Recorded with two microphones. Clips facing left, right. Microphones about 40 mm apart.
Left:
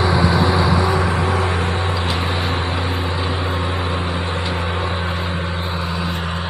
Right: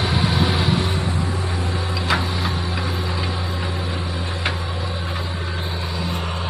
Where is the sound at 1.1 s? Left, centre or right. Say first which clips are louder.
Left 6 dB; left.